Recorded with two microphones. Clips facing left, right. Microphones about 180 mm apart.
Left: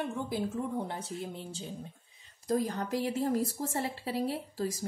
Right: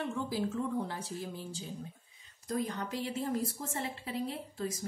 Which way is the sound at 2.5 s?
40° left (ahead or behind).